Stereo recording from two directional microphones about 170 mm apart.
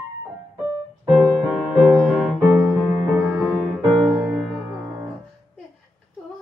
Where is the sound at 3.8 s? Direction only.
30° right (ahead or behind).